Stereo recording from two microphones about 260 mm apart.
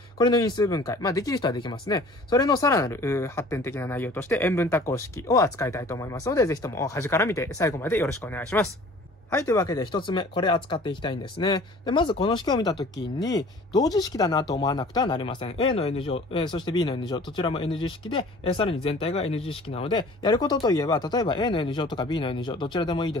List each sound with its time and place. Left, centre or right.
0.2 s speech: centre